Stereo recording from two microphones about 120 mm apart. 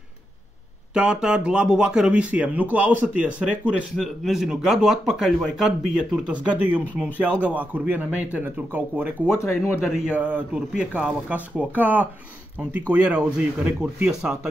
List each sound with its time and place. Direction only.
0.9 s speech: 5° right (ahead or behind)
9.2 s speech: 20° left (ahead or behind)
9.8 s speech: 5° right (ahead or behind)